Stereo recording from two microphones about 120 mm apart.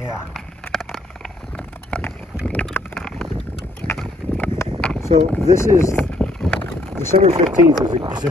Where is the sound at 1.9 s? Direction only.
15° left (ahead or behind).